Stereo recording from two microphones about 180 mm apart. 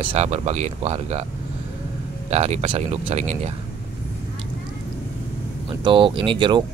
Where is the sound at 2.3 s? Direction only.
35° right (ahead or behind).